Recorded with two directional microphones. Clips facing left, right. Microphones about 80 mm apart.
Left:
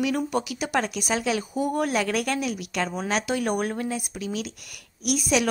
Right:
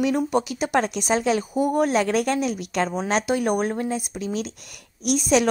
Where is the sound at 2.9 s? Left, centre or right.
Right.